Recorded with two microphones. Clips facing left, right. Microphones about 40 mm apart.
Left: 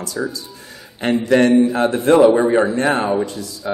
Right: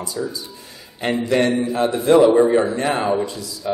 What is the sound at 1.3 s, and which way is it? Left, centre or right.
Speech, left.